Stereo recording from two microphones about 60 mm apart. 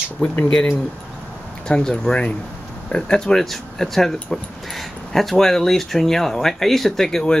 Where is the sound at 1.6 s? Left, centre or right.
Centre.